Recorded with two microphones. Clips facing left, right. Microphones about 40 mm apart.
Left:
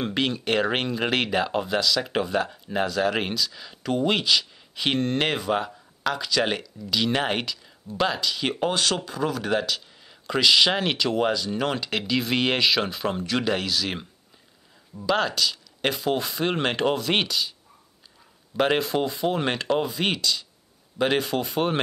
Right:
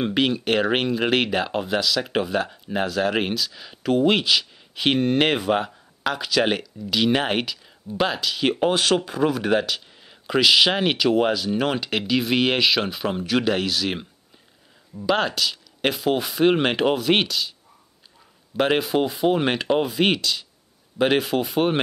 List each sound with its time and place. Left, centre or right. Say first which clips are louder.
0.0 s speech: right 4 dB; centre
15.0 s speech: right 2 dB; centre
18.6 s speech: right 2 dB; centre